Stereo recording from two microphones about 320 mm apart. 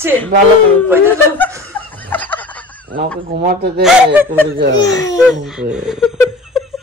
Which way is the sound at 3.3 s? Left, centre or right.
Right.